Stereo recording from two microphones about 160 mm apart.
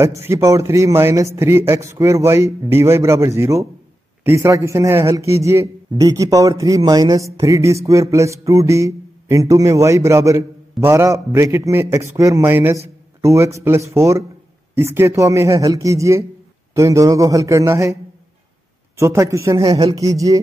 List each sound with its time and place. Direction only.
0.0 s a man's voice: 15° right (ahead or behind)
18.9 s a man's voice: 20° right (ahead or behind)